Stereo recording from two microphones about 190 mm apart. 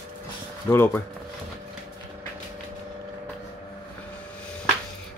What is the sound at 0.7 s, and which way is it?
Speech, 15° left (ahead or behind).